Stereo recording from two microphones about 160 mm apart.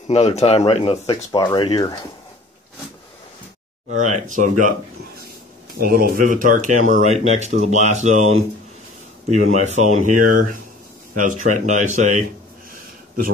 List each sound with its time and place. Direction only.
0.1 s speech: 40° left (ahead or behind); by 2.0 s 25° left (ahead or behind)
3.9 s speech: 50° right (ahead or behind)
5.8 s speech: 65° right (ahead or behind); by 12.3 s 50° right (ahead or behind)